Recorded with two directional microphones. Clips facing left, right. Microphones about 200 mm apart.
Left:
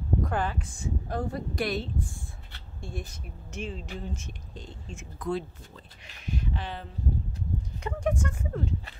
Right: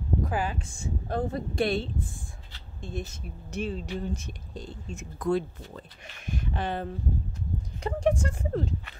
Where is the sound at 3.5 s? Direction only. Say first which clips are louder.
Right 5 dB; 35° right (ahead or behind); by 6.8 s 50° right (ahead or behind).